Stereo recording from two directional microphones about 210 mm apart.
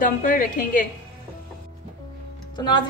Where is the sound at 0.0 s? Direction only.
40° left (ahead or behind).